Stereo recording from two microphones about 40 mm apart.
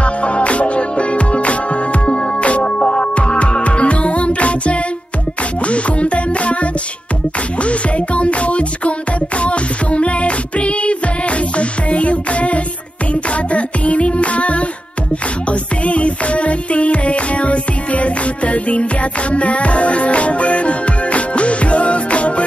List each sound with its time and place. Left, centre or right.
0.0 s music: left
15.8 s music: left